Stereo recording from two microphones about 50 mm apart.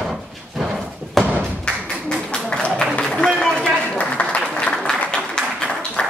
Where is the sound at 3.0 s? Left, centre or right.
Centre.